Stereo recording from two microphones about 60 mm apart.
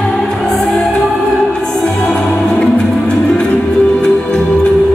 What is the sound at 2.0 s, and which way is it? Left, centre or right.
Music, centre.